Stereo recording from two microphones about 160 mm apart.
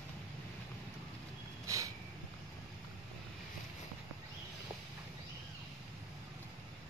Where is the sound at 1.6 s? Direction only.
20° right (ahead or behind).